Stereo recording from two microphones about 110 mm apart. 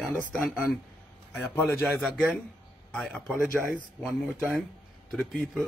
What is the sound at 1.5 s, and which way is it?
A man's voice, 20° left (ahead or behind).